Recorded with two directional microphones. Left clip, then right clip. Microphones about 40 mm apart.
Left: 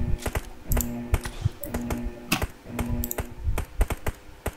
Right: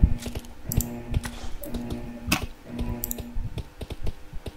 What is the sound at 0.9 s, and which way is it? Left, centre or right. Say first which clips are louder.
Typing: left 3 dB; centre.